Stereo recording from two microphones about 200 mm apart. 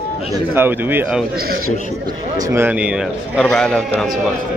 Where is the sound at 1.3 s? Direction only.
50° right (ahead or behind).